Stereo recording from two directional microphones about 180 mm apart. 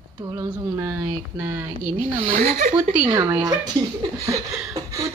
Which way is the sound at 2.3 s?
50° right (ahead or behind).